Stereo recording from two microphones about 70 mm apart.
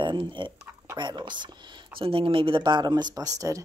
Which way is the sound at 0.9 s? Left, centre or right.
Right.